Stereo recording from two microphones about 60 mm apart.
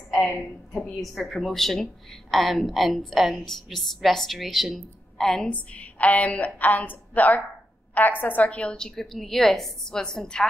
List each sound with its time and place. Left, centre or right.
0.7 s a woman's voice: centre
5.5 s a woman's voice: left